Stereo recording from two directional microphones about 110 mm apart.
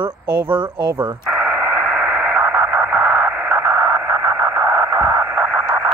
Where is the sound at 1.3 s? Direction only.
5° right (ahead or behind).